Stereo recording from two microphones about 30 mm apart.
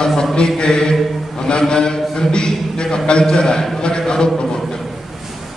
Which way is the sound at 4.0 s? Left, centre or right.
Left.